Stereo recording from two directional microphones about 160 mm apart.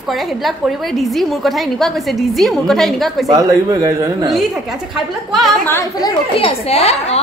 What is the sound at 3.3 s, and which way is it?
Speech, 20° right (ahead or behind).